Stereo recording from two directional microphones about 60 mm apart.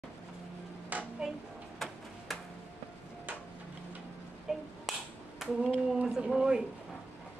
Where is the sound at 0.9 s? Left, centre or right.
Right.